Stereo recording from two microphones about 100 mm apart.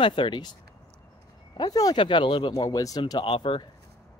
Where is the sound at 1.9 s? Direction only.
60° left (ahead or behind); by 3.2 s 40° left (ahead or behind).